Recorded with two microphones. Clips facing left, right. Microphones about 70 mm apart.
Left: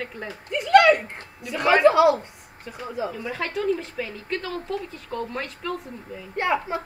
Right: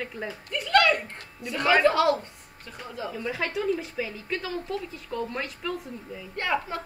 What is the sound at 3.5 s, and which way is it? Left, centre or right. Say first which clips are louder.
Speech: left 5 dB; centre.